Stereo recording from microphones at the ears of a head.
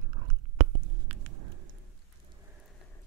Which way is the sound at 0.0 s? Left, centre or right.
Right.